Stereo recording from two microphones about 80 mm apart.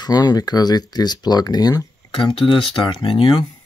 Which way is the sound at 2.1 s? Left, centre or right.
Left.